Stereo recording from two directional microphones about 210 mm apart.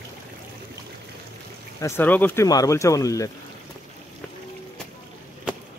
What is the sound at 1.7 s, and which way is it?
Speech, 10° left (ahead or behind).